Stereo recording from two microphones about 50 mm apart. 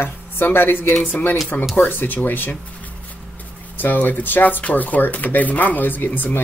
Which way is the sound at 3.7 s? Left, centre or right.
Left.